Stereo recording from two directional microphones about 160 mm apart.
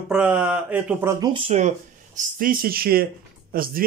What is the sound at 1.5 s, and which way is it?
Speech, 50° right (ahead or behind).